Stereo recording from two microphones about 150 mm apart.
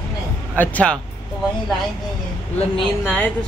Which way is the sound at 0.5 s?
10° left (ahead or behind).